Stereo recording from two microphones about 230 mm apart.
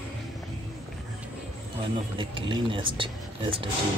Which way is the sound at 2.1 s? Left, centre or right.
Right.